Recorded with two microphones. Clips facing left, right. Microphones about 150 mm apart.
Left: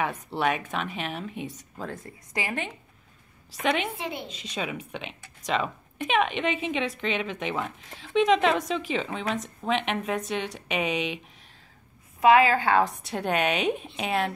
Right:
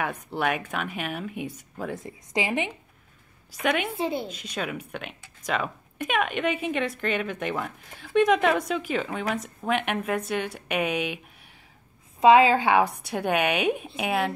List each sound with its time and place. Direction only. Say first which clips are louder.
0.1 s a woman's voice: even; centre (ahead or behind); by 2.7 s 15° right (ahead or behind)
3.6 s a woman's voice: right 1 dB; 5° right (ahead or behind)
4.0 s speech: right 6 dB; 35° right (ahead or behind)
4.6 s a woman's voice: even; centre (ahead or behind)
12.2 s speech: right 2 dB; 20° right (ahead or behind); by 14.3 s 5° right (ahead or behind)